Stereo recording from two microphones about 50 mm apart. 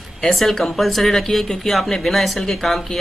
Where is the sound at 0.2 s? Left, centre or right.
Centre.